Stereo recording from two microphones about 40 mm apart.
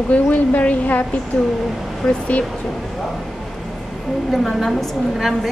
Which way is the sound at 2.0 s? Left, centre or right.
Left.